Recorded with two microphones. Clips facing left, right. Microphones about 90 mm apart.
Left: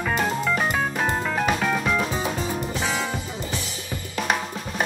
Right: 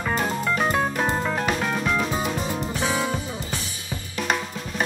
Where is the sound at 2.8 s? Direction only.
10° right (ahead or behind).